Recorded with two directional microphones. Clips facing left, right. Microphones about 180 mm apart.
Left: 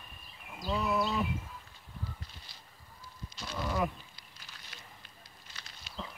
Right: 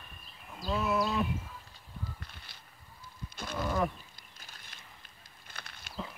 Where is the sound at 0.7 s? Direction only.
Centre (ahead or behind).